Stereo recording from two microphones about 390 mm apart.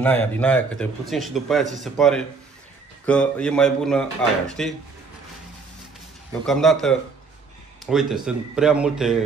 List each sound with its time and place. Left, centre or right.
0.0 s speech: centre
6.4 s speech: centre